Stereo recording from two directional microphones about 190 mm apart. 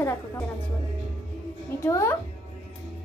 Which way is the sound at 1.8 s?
15° left (ahead or behind).